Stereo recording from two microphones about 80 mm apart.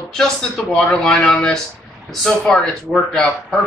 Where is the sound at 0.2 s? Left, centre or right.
Centre.